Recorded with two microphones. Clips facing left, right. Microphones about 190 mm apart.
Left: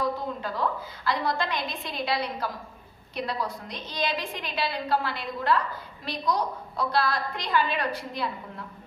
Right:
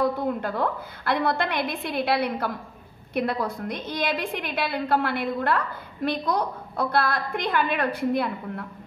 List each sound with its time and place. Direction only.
0.0 s a woman's voice: 55° right (ahead or behind)